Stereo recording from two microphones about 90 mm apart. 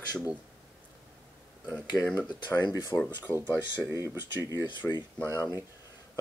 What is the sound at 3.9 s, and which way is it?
Speech, 35° right (ahead or behind).